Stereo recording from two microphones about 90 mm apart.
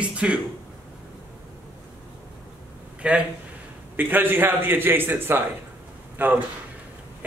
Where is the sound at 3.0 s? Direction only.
15° right (ahead or behind).